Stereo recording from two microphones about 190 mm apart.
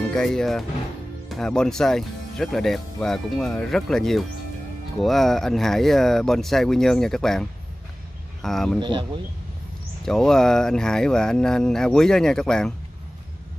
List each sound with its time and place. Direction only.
0.1 s speech: 5° left (ahead or behind)
8.8 s speech: 25° right (ahead or behind)
10.0 s speech: centre (ahead or behind)